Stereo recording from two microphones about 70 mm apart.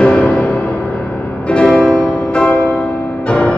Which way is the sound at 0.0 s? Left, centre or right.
Centre.